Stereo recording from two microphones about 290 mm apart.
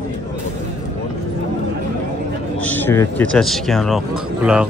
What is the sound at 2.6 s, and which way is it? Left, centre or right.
Speech, centre.